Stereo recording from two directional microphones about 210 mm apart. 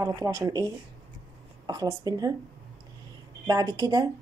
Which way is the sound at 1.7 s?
20° right (ahead or behind).